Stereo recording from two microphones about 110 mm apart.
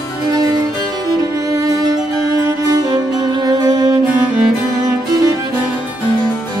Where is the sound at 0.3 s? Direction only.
35° right (ahead or behind).